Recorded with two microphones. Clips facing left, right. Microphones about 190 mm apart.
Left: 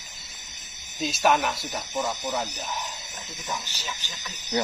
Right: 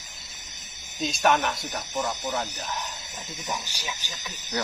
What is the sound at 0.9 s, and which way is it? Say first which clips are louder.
Speech: even; 5° left (ahead or behind).